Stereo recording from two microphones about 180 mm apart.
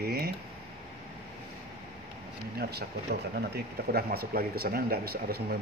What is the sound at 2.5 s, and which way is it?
A man's voice, 60° right (ahead or behind).